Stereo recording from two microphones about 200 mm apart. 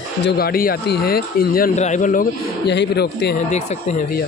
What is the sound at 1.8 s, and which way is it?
Speech, 35° left (ahead or behind).